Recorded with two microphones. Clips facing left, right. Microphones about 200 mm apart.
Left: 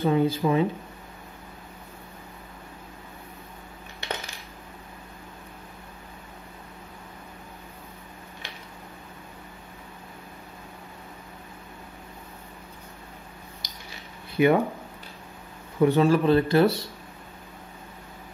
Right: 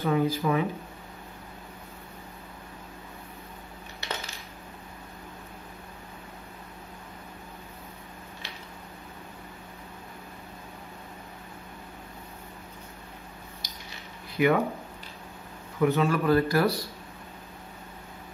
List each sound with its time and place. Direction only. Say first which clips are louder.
0.0 s speech: left 3 dB; 25° left (ahead or behind)
14.3 s speech: left 3 dB; 25° left (ahead or behind)
15.8 s speech: left 4 dB; 30° left (ahead or behind)